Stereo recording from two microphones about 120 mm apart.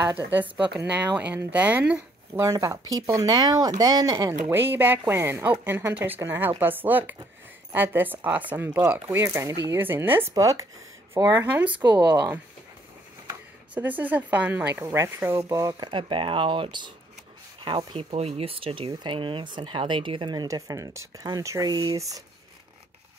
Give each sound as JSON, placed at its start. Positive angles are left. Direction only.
{"t": 0.9, "sound": "speech", "side_deg": -10}
{"t": 2.4, "sound": "speech", "side_deg": -25}
{"t": 4.5, "sound": "speech", "side_deg": -15}
{"t": 9.8, "sound": "speech", "side_deg": -15}
{"t": 10.3, "sound": "speech", "side_deg": -30}
{"t": 11.7, "sound": "speech", "side_deg": -40}
{"t": 13.3, "sound": "speech", "side_deg": -15}
{"t": 15.9, "sound": "speech", "side_deg": -45}